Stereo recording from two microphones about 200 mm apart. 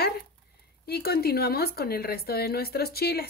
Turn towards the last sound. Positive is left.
turn(degrees=50)  # may be behind; listen again after turning